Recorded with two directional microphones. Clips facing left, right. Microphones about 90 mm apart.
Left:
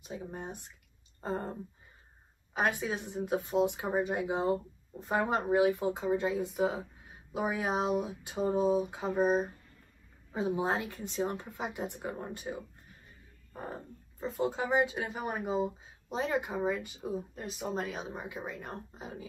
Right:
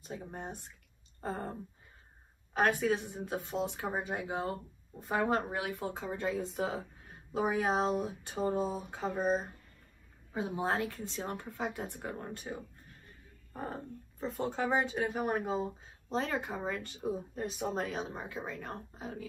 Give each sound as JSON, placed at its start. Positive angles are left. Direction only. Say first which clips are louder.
{"t": 0.0, "sound": "speech", "louder": "left 1 dB", "side_deg": 10}
{"t": 2.5, "sound": "speech", "louder": "right 2 dB", "side_deg": 10}
{"t": 10.5, "sound": "speech", "louder": "even", "side_deg": 15}
{"t": 14.2, "sound": "speech", "louder": "left 1 dB", "side_deg": 10}